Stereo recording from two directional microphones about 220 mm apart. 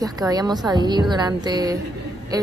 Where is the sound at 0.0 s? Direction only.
15° right (ahead or behind).